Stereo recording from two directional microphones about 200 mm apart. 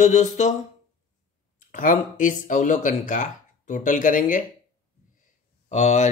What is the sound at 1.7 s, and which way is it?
Speech, 40° left (ahead or behind).